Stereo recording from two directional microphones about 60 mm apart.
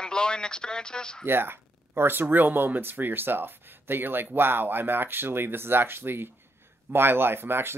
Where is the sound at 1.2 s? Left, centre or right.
Right.